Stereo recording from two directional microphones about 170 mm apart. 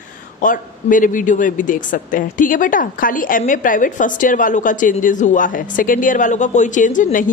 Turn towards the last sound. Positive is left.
turn(degrees=50)  # may be behind; listen again after turning